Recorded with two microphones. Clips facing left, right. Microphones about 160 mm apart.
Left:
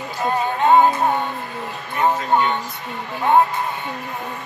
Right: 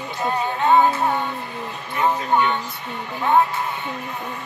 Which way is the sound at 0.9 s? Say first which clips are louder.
Left 2 dB; 20° left (ahead or behind).